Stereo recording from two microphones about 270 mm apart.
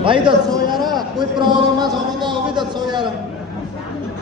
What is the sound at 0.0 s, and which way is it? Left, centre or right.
A man's voice, centre.